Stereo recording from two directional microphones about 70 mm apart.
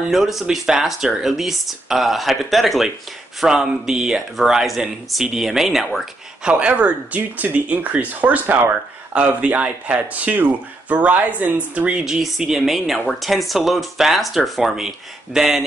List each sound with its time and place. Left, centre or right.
0.1 s speech: centre
6.4 s speech: centre
12.0 s speech: centre